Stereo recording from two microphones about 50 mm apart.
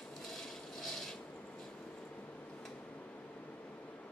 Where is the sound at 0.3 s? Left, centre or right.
Centre.